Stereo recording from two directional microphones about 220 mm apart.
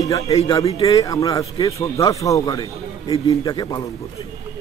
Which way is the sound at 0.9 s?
15° left (ahead or behind).